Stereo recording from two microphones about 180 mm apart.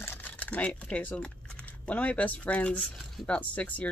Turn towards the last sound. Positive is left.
turn(degrees=10)  # may be behind; listen again after turning